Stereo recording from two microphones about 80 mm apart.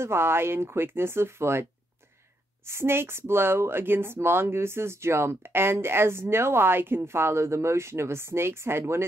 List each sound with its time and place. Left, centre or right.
0.0 s speech: right